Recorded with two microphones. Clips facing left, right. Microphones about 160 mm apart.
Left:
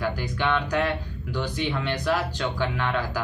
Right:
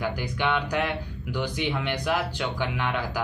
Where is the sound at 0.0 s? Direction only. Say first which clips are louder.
Left 1 dB; 15° right (ahead or behind).